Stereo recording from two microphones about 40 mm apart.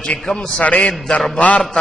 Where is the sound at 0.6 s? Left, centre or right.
Left.